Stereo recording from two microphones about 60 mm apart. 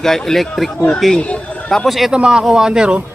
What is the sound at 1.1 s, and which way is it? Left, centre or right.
Speech, centre.